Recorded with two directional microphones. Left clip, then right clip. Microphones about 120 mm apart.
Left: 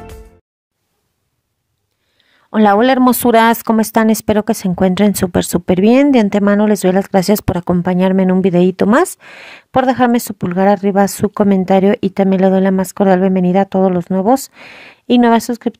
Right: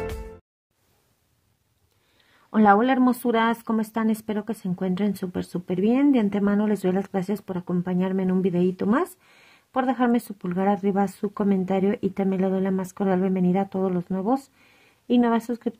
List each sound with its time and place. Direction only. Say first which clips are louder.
2.5 s speech: left 8 dB; 50° left (ahead or behind); by 9.1 s 85° left
9.2 s speech: left 19 dB; 55° left (ahead or behind)
11.1 s speech: left 12 dB; 65° left (ahead or behind)